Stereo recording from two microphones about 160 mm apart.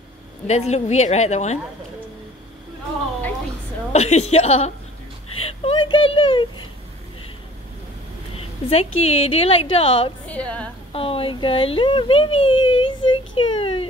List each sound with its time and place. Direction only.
0.5 s a woman's voice: 45° left (ahead or behind)
3.9 s speech: 40° left (ahead or behind)
8.4 s speech: 40° left (ahead or behind)
10.2 s a woman's voice: 10° left (ahead or behind)
10.9 s speech: 35° left (ahead or behind)